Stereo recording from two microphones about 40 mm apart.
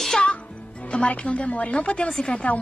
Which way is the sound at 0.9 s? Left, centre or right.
Left.